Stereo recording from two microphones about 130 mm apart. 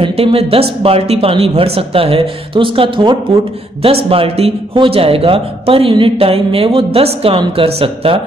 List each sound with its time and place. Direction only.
0.0 s a man's voice: 45° right (ahead or behind)